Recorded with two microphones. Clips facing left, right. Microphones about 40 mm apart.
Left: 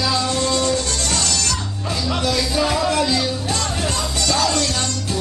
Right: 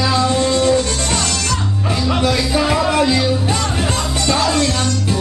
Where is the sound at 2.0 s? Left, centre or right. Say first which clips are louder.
Right 4 dB; right.